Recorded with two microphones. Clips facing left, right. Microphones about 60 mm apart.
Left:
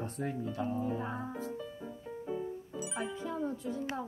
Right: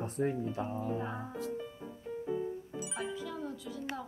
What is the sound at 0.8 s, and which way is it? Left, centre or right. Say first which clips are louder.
Music: left 1 dB; centre.